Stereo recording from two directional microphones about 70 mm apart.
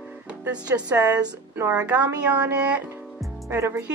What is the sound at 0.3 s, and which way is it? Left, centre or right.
A woman's voice, centre.